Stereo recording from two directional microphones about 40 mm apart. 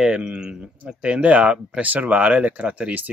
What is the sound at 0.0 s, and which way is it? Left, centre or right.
Speech, centre.